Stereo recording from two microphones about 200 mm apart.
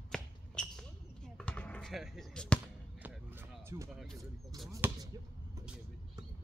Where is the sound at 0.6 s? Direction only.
5° left (ahead or behind).